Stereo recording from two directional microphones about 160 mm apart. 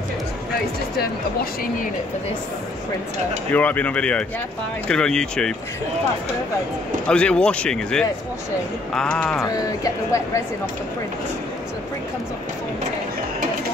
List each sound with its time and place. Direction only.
3.5 s speech: 10° left (ahead or behind)
7.1 s speech: 5° left (ahead or behind)
9.4 s speech: 20° left (ahead or behind)